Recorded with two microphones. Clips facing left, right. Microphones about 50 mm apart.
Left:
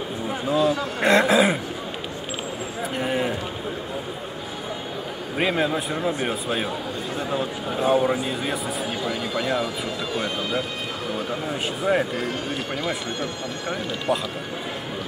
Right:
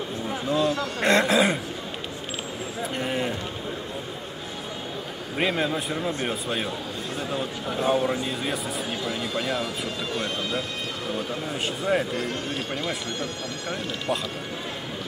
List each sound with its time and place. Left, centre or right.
0.3 s a sound: centre
2.8 s clip-clop: centre
5.4 s a man's voice: centre